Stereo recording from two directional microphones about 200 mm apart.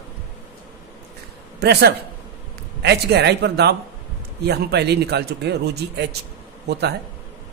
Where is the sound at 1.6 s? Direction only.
55° right (ahead or behind).